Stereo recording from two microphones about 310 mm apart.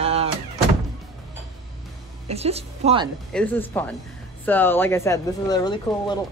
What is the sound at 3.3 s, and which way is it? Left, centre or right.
Speech, centre.